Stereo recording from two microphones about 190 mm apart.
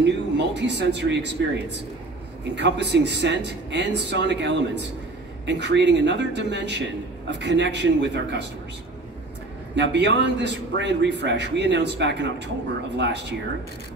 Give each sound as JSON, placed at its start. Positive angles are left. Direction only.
{"t": 0.0, "sound": "a man's voice", "side_deg": -65}
{"t": 9.8, "sound": "a man's voice", "side_deg": -65}